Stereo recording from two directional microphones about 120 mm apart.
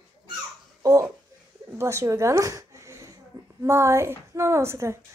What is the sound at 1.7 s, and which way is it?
A woman's voice, 25° right (ahead or behind).